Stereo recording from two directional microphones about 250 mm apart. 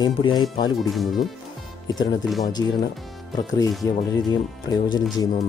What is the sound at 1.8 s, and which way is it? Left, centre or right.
Speech, centre.